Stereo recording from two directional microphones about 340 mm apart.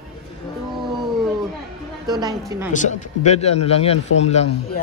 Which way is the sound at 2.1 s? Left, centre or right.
Centre.